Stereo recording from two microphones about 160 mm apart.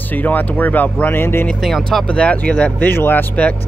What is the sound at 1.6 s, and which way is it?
Speech, centre (ahead or behind).